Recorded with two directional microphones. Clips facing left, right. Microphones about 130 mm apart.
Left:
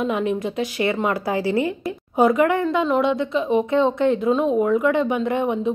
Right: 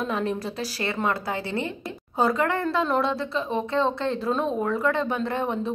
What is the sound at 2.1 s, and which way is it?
Speech, 20° left (ahead or behind).